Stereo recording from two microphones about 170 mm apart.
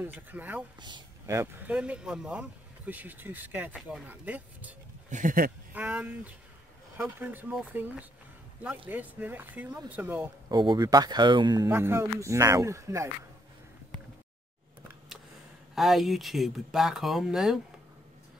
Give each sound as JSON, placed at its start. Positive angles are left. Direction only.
{"t": 0.0, "sound": "speech", "side_deg": -10}
{"t": 0.7, "sound": "speech", "side_deg": -25}
{"t": 5.1, "sound": "a sound", "side_deg": -55}
{"t": 5.8, "sound": "speech", "side_deg": -10}
{"t": 10.5, "sound": "speech", "side_deg": -25}
{"t": 15.7, "sound": "speech", "side_deg": 0}